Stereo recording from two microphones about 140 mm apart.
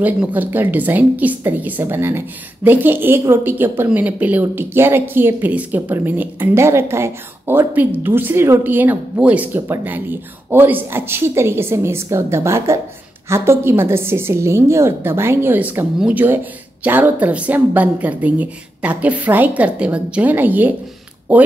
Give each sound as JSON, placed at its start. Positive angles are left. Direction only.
{"t": 0.0, "sound": "a woman's voice", "side_deg": -10}